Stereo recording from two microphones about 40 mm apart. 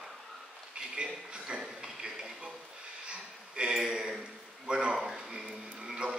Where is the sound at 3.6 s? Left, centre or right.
Centre.